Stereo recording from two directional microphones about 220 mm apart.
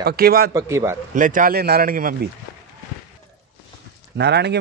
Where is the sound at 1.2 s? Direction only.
35° right (ahead or behind).